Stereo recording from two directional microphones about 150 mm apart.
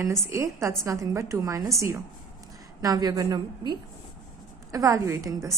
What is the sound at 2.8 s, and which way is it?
A woman's voice, 25° right (ahead or behind).